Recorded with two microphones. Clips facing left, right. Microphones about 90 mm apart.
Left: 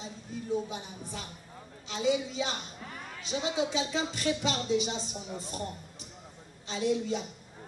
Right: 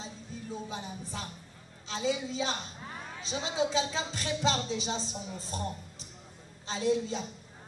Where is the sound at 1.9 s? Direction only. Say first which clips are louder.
Left 3 dB; 35° right (ahead or behind).